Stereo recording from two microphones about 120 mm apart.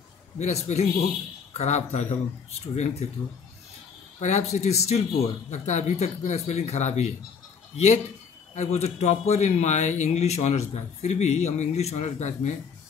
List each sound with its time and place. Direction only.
0.4 s speech: 65° left (ahead or behind)
4.2 s a man's voice: 75° left (ahead or behind)
5.5 s a man's voice: 75° left (ahead or behind)